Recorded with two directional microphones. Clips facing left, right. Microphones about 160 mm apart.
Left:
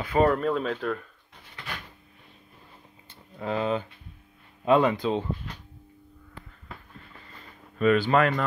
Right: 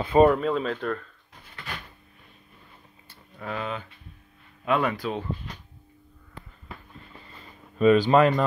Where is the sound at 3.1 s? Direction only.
25° left (ahead or behind).